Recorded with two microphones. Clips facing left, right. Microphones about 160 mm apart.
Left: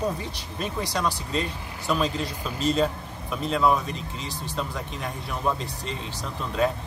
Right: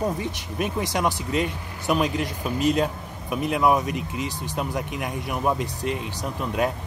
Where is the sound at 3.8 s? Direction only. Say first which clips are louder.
Right 5 dB; 65° right (ahead or behind).